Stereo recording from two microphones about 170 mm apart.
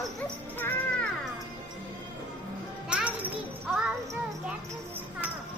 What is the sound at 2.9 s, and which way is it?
Music, 5° right (ahead or behind).